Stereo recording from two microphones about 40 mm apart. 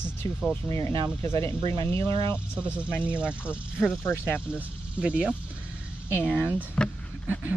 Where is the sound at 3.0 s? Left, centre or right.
Right.